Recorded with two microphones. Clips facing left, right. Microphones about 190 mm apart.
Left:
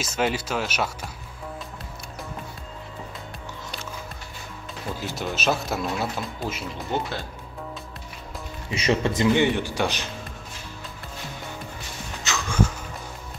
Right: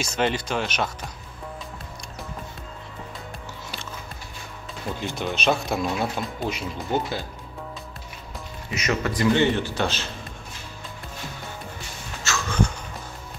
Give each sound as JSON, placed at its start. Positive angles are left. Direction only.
{"t": 0.0, "sound": "speech", "side_deg": 5}
{"t": 5.0, "sound": "speech", "side_deg": 5}
{"t": 8.7, "sound": "speech", "side_deg": 30}
{"t": 12.2, "sound": "a sound", "side_deg": 15}